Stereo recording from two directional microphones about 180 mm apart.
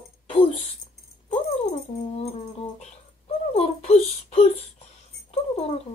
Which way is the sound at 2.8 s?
35° left (ahead or behind).